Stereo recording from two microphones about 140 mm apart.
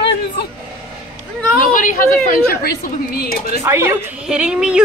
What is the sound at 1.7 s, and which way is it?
Speech, 70° left (ahead or behind).